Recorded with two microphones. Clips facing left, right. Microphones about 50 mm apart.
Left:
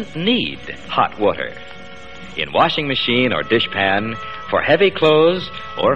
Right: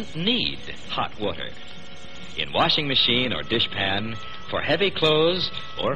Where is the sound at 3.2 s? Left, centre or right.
Left.